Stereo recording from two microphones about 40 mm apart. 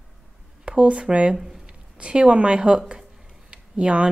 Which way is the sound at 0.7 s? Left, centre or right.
Right.